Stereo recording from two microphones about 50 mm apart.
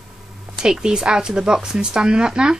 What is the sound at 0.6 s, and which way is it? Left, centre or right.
Speech, centre.